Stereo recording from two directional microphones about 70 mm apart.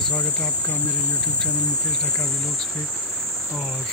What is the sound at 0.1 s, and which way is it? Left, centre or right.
Cricket, left.